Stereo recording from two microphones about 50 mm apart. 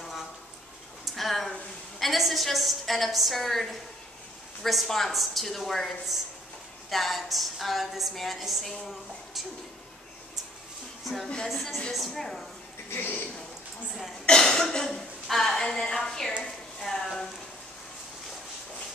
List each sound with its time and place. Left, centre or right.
1.0 s a sound: centre
2.0 s a woman's voice: centre
4.6 s a woman's voice: centre
11.4 s a woman's voice: centre
12.9 s a man's voice: left
14.2 s speech: centre